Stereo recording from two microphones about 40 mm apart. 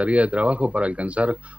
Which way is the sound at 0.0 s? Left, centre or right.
Right.